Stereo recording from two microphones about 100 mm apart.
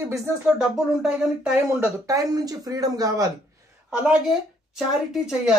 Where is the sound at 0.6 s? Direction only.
5° right (ahead or behind).